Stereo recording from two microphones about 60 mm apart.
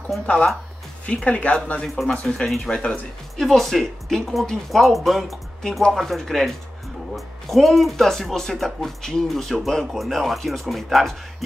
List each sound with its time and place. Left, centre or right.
1.0 s speech: left
2.0 s speech: centre